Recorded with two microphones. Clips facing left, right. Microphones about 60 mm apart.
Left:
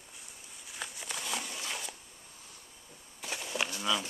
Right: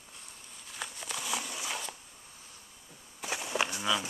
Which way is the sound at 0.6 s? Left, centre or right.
Centre.